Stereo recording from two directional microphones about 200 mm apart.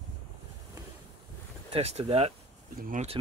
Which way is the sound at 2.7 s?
45° right (ahead or behind).